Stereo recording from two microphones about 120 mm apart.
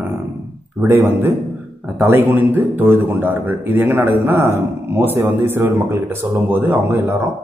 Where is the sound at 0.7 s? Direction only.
25° right (ahead or behind).